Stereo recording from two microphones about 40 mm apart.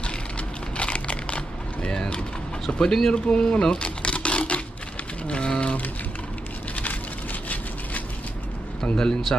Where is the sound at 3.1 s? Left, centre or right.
Left.